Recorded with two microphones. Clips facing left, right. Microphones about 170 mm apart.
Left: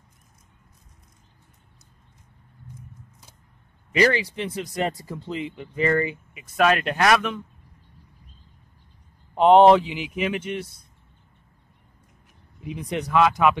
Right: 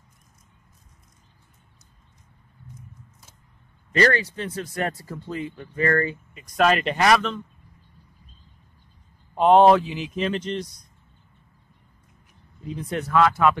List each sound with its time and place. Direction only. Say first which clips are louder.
3.9 s speech: even; 10° left (ahead or behind)
9.3 s speech: left 1 dB; 20° left (ahead or behind)
12.5 s speech: even; 10° left (ahead or behind)